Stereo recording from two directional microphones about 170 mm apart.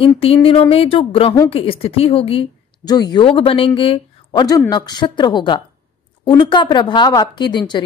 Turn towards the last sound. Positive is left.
turn(degrees=25)  # may be behind; listen again after turning